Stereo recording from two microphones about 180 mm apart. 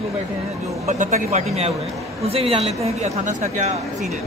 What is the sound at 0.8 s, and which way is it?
A woman's voice, 40° right (ahead or behind).